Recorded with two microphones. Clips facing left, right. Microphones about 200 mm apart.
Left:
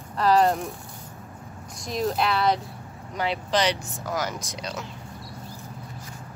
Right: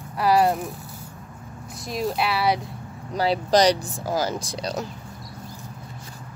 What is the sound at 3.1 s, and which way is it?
Speech, 35° right (ahead or behind).